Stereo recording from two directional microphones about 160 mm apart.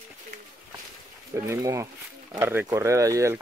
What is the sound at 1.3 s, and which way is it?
Speech, 20° right (ahead or behind).